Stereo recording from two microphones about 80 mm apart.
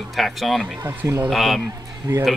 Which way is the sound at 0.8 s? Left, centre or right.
Right.